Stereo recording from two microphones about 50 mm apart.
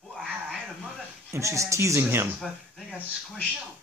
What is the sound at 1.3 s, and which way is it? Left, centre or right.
Speech, right.